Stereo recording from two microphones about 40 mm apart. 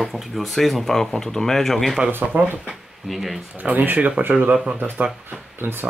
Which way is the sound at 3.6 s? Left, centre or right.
Right.